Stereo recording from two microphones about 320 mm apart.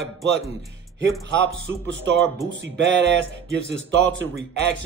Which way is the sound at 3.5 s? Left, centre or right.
Right.